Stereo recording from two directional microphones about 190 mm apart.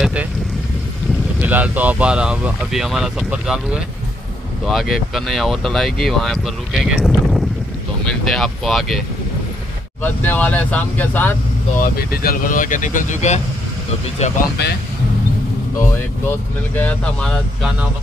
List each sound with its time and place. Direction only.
0.0 s vehicle: 5° right (ahead or behind)
1.4 s speech: 10° right (ahead or behind)
10.0 s speech: 10° left (ahead or behind)
11.8 s speech: 50° left (ahead or behind)
14.6 s speech: 60° left (ahead or behind)
16.3 s speech: 10° left (ahead or behind)